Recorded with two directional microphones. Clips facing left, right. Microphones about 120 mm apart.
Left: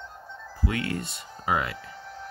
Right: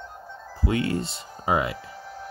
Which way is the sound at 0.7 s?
25° right (ahead or behind).